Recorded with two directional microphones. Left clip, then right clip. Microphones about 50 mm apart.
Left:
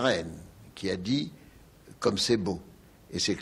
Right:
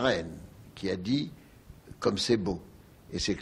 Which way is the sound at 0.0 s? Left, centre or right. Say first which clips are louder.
Left 1 dB; right.